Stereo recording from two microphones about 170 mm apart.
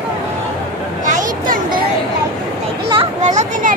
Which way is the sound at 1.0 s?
50° right (ahead or behind).